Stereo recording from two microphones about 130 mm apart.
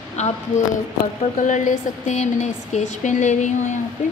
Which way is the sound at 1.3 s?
70° left (ahead or behind).